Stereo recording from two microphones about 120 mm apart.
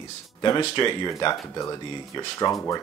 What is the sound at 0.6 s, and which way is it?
Speech, 40° left (ahead or behind).